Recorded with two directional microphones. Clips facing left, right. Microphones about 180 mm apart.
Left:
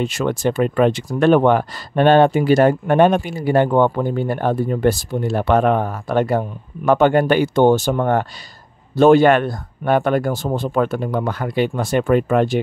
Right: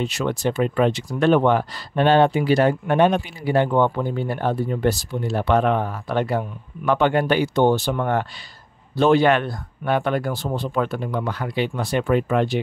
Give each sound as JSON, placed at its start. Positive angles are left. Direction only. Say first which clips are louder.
{"t": 0.0, "sound": "speech", "louder": "left 3 dB", "side_deg": 50}